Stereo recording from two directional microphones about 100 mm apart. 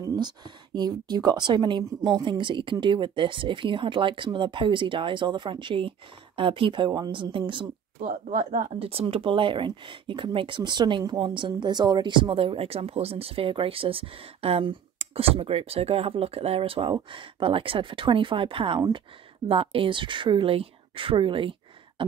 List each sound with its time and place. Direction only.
0.0 s speech: 45° right (ahead or behind)
8.7 s speech: 70° right (ahead or behind)